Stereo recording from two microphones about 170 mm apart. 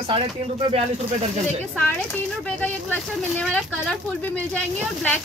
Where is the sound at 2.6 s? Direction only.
10° left (ahead or behind).